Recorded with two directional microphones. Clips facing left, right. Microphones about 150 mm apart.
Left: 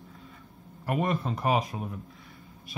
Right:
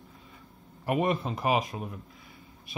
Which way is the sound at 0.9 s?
15° right (ahead or behind).